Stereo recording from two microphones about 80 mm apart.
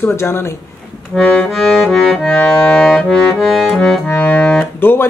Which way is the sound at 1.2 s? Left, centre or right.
Centre.